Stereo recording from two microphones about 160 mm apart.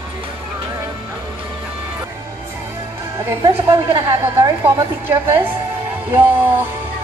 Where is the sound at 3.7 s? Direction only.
20° right (ahead or behind).